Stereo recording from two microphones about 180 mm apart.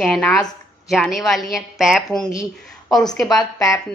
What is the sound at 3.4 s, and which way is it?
Speech, 20° left (ahead or behind).